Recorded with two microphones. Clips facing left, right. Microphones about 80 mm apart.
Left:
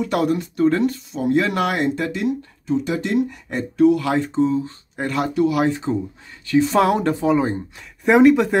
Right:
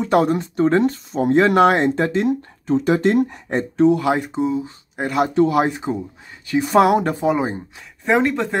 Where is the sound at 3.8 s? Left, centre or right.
Right.